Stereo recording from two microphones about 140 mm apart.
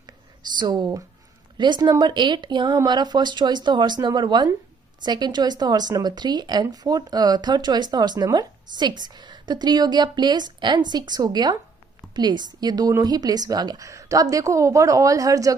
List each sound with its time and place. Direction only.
0.6 s a woman's voice: 30° right (ahead or behind)